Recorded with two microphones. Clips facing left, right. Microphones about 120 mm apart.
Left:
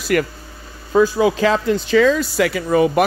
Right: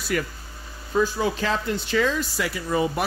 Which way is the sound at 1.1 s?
90° left.